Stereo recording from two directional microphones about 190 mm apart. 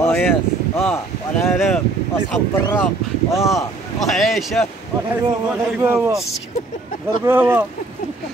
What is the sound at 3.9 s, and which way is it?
Speech, centre (ahead or behind).